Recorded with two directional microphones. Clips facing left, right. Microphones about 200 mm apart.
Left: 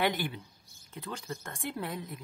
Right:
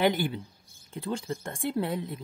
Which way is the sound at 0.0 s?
25° right (ahead or behind).